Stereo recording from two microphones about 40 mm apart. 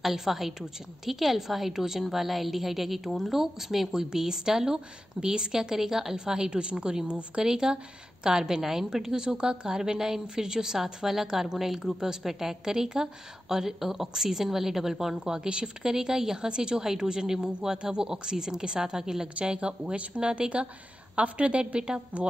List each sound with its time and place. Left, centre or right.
0.0 s a woman's voice: centre; by 22.0 s right